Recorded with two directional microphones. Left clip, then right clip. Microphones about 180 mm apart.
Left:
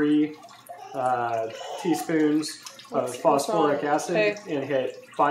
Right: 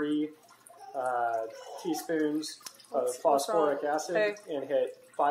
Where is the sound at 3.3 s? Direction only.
15° left (ahead or behind).